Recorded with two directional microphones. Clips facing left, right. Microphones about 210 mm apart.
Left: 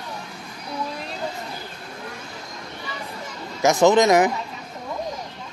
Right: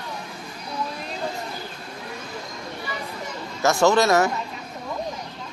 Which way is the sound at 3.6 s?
15° left (ahead or behind).